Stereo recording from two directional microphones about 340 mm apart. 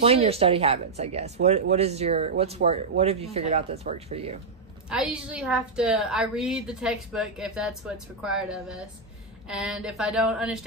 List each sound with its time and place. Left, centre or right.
0.0 s speech: centre
4.8 s a woman's voice: centre